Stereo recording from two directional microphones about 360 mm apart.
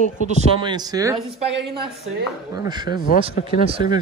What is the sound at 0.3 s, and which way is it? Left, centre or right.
Speech, centre.